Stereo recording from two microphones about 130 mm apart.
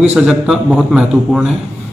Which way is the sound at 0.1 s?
5° right (ahead or behind).